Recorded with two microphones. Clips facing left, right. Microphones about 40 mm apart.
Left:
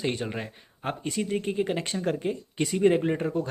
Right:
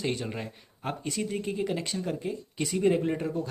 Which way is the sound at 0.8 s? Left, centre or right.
Left.